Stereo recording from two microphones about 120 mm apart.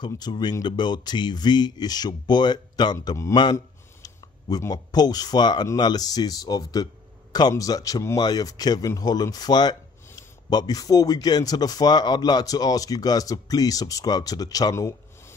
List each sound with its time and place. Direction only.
0.0 s a man's voice: 35° left (ahead or behind)